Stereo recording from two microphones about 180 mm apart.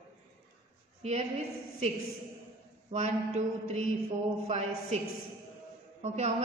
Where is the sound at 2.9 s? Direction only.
40° right (ahead or behind).